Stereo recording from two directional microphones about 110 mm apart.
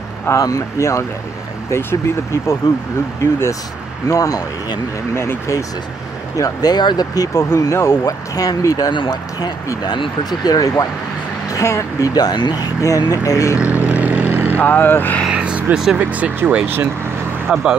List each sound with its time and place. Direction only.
0.3 s speech: 30° left (ahead or behind)
13.8 s vehicle: 15° right (ahead or behind)
14.6 s speech: 15° left (ahead or behind)
15.2 s vehicle: 10° right (ahead or behind)
16.1 s speech: 15° right (ahead or behind)
17.5 s speech: 5° right (ahead or behind)